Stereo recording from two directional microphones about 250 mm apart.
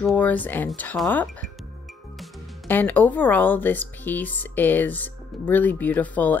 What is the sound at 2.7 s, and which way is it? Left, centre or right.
Speech, centre.